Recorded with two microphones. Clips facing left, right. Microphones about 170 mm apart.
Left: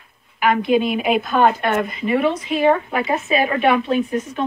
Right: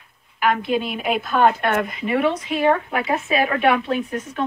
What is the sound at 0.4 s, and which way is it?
Speech, 5° left (ahead or behind).